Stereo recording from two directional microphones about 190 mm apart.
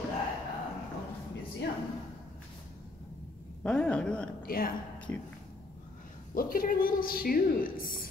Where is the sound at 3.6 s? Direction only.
5° left (ahead or behind).